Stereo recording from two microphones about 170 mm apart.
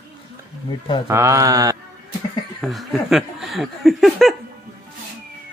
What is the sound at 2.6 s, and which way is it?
Speech, centre (ahead or behind).